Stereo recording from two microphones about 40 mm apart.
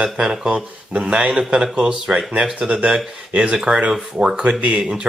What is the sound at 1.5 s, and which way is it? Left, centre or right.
Speech, centre.